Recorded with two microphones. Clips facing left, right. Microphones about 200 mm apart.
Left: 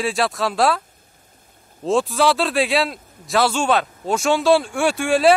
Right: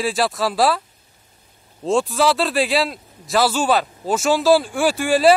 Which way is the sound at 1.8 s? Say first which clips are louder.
Even; centre (ahead or behind).